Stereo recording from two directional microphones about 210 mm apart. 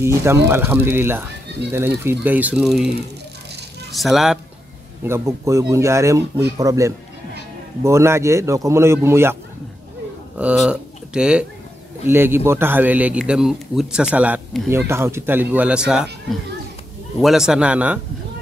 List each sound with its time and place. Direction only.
0.0 s a man's voice: 15° right (ahead or behind)
3.9 s speech: centre (ahead or behind)
5.0 s a man's voice: 15° right (ahead or behind)